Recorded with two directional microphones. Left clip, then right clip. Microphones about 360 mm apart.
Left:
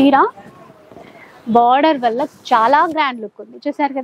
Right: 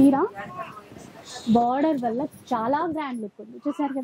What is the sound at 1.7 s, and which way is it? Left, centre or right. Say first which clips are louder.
A woman's voice: left 11 dB; centre.